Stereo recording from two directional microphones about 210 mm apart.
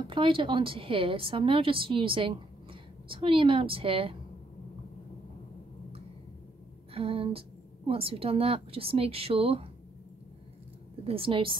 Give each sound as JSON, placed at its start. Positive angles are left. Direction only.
{"t": 0.0, "sound": "a woman's voice", "side_deg": -25}
{"t": 6.9, "sound": "a woman's voice", "side_deg": -25}
{"t": 11.1, "sound": "a woman's voice", "side_deg": -25}